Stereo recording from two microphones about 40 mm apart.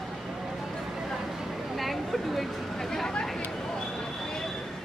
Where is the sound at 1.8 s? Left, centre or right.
Centre.